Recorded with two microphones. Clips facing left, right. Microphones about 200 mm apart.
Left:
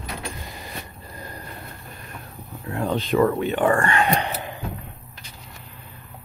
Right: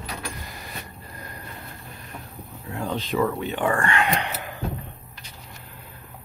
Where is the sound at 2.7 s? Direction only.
55° left (ahead or behind).